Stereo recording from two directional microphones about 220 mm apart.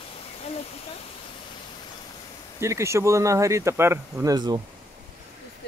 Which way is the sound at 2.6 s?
10° right (ahead or behind).